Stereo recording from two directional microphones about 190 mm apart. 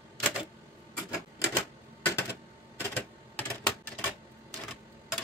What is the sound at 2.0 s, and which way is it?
Typewriter, 15° left (ahead or behind).